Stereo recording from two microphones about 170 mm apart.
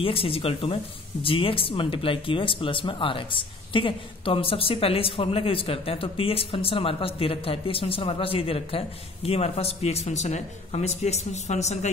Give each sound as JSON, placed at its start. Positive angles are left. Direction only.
{"t": 0.0, "sound": "speech", "side_deg": 35}